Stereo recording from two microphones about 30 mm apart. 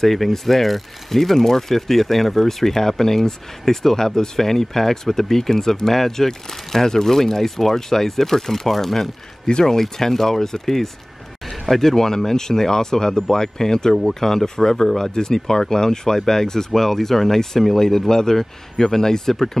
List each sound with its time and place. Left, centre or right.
0.0 s speech: centre